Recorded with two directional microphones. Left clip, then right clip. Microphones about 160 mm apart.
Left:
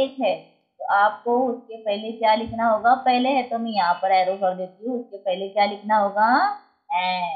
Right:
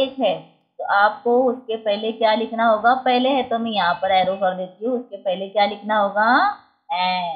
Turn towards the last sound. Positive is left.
turn(degrees=-15)  # may be behind; listen again after turning